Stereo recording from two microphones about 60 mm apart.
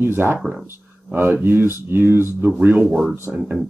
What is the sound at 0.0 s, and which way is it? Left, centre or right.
Speech, right.